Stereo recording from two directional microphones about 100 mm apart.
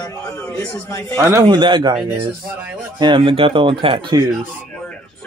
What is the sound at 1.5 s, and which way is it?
Speech, 50° right (ahead or behind).